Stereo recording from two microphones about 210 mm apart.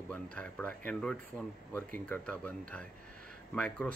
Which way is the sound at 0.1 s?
5° left (ahead or behind).